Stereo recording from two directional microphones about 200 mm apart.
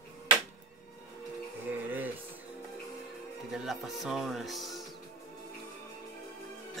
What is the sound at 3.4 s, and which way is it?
Music, centre (ahead or behind).